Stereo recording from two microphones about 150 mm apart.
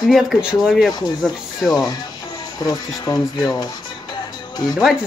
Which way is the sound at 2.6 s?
25° left (ahead or behind).